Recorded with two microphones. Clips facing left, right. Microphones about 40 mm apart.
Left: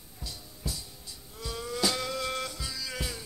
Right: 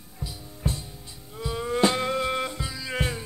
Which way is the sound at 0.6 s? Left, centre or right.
Right.